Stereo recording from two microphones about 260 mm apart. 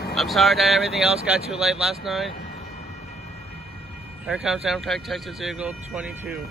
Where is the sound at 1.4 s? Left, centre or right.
Right.